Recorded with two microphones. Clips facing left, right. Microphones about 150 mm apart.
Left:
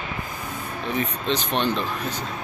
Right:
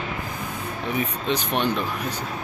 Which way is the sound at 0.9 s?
10° right (ahead or behind).